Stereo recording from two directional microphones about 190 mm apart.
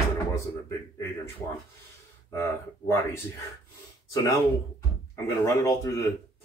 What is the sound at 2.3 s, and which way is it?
Speech, 15° left (ahead or behind).